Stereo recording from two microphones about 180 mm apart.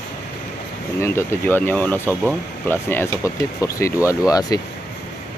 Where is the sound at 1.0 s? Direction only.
15° left (ahead or behind).